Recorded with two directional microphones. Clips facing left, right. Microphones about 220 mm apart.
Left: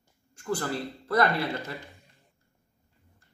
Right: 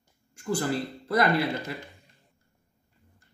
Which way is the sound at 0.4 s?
10° right (ahead or behind).